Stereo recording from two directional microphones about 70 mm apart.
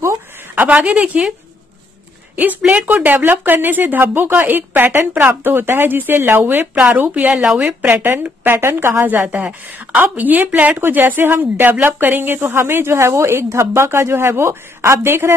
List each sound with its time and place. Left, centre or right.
0.6 s speech: right
2.8 s speech: right
7.9 s a woman's voice: right